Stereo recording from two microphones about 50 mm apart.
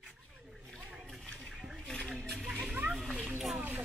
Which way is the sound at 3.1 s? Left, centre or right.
Right.